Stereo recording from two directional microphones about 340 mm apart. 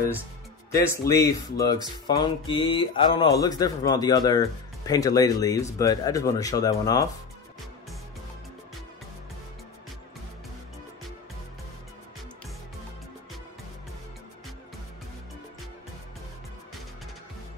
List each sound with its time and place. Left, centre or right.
0.7 s speech: centre